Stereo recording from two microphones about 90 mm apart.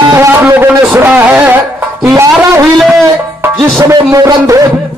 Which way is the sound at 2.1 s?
35° right (ahead or behind).